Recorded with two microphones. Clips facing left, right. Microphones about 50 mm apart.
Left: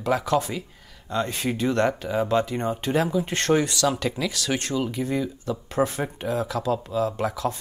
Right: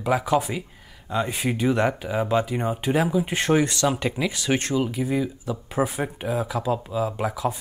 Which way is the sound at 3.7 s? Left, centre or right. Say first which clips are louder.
Even; right.